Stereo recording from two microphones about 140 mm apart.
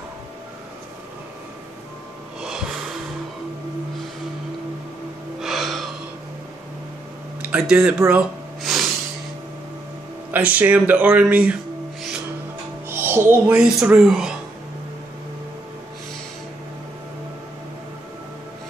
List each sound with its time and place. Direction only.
2.4 s a sound: 5° right (ahead or behind)
5.4 s gasp: centre (ahead or behind)
7.5 s speech: 10° right (ahead or behind)
8.1 s a sound: 5° right (ahead or behind)
10.3 s speech: 10° right (ahead or behind)
12.8 s music: 15° right (ahead or behind)
13.6 s speech: 5° right (ahead or behind)